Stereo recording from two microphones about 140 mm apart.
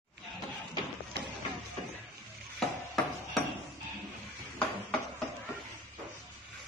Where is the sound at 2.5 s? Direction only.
Centre (ahead or behind).